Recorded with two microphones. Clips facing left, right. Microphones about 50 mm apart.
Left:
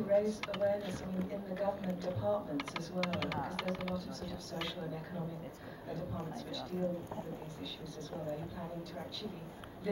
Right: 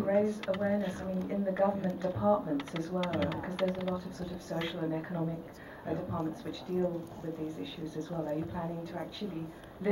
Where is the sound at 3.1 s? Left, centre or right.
Left.